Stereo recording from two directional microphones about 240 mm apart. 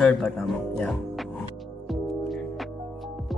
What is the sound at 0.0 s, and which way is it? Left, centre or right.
Speech, centre.